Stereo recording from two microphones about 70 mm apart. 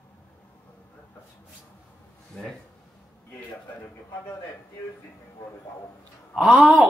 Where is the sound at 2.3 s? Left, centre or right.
Centre.